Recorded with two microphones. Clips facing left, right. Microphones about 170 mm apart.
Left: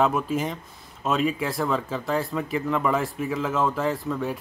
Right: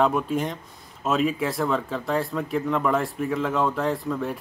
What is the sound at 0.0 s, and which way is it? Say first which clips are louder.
A man's voice: right 1 dB; centre (ahead or behind).